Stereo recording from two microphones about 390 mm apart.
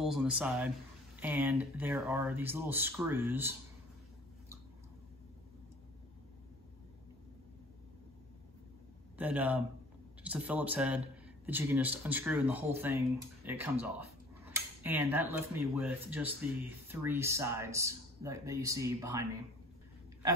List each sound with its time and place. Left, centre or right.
0.0 s speech: centre
9.2 s speech: centre